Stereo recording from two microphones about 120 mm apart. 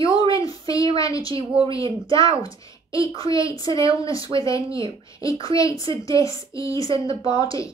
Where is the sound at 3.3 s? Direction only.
30° left (ahead or behind).